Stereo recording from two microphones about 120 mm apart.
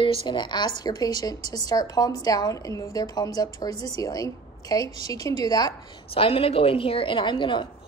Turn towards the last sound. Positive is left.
turn(degrees=40)  # may be behind; listen again after turning